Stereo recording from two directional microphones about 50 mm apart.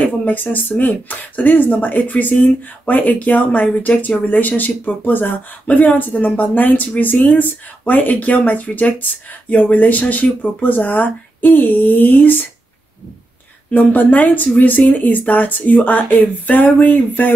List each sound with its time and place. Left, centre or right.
0.0 s speech: left
13.7 s speech: left